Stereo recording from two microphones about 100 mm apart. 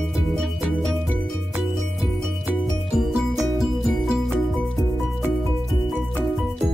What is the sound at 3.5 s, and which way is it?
Music, centre (ahead or behind).